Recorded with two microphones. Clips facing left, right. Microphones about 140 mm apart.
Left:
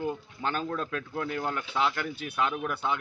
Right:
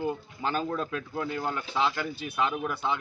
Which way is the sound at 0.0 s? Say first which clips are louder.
Right 1 dB; 5° right (ahead or behind).